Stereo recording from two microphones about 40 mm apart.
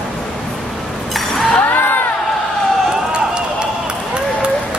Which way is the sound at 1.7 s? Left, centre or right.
Left.